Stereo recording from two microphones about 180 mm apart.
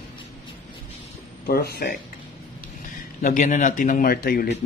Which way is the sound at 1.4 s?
60° left (ahead or behind).